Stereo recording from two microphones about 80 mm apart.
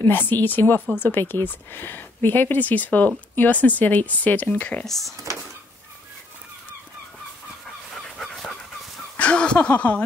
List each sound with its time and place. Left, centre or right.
0.0 s speech: left
4.8 s speech: centre
7.9 s dog: centre
9.1 s a sound: centre